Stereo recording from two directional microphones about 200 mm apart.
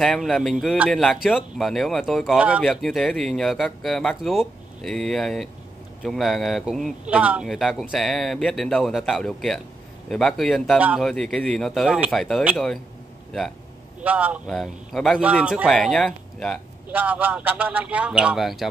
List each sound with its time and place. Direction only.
0.0 s speech: centre (ahead or behind)
14.0 s a man's voice: 5° right (ahead or behind)
16.9 s a man's voice: 10° right (ahead or behind)